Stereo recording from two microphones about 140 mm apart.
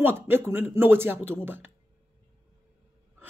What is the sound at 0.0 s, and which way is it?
Speech, 15° right (ahead or behind).